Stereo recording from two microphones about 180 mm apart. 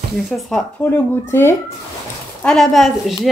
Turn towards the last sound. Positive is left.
turn(degrees=0)  # may be behind; listen again after turning